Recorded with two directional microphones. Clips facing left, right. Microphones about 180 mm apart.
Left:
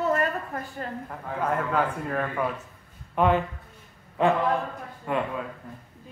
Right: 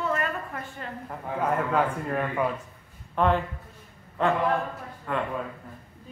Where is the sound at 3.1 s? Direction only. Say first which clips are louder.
Left 1 dB; 5° left (ahead or behind).